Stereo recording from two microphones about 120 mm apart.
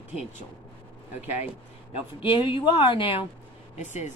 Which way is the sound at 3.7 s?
75° left (ahead or behind).